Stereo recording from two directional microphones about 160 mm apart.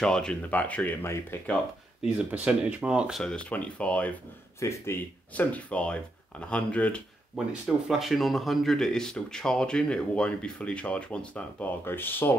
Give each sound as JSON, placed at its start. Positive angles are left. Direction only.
{"t": 0.0, "sound": "speech", "side_deg": 5}
{"t": 2.0, "sound": "speech", "side_deg": -10}